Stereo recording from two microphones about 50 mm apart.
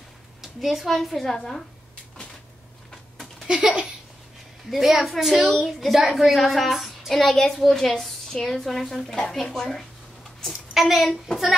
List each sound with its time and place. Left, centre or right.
0.4 s speech: centre
3.4 s a sound: centre
4.6 s a woman's voice: centre
10.5 s a woman's voice: centre